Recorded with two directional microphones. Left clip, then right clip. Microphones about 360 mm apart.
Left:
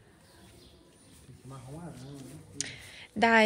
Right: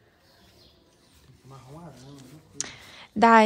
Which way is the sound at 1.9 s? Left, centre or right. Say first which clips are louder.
Left 1 dB; centre.